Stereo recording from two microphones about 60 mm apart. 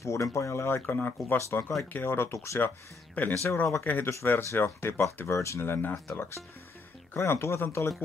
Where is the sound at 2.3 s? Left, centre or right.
Left.